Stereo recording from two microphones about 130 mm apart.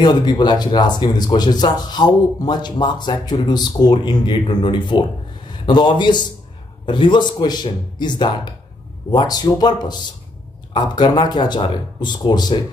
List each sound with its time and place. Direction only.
0.0 s speech: 35° left (ahead or behind)